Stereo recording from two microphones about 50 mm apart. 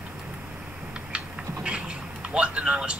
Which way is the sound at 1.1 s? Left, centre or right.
Right.